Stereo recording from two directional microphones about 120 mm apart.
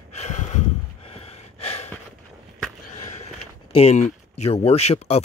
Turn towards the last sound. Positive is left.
turn(degrees=60)  # may be behind; listen again after turning